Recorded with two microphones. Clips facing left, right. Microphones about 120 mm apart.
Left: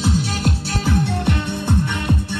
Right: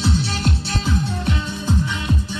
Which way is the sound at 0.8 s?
60° left (ahead or behind).